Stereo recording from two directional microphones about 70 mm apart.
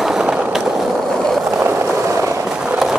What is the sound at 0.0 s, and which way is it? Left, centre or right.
Skateboard, centre.